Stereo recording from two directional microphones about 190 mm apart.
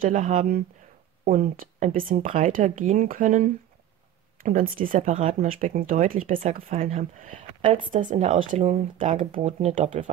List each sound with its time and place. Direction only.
0.0 s speech: 45° right (ahead or behind)